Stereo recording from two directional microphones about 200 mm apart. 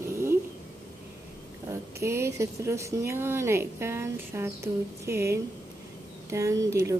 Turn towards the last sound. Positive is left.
turn(degrees=-15)  # may be behind; listen again after turning